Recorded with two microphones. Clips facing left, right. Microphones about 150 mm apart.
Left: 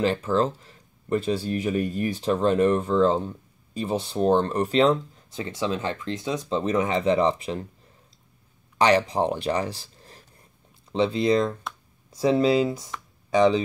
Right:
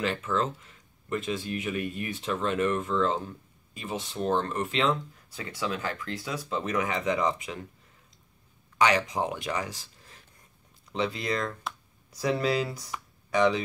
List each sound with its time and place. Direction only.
0.0 s speech: 35° left (ahead or behind)
5.3 s speech: 25° left (ahead or behind)
8.7 s speech: 35° left (ahead or behind)